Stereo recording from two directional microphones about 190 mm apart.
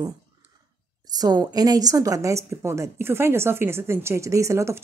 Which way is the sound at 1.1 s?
20° right (ahead or behind).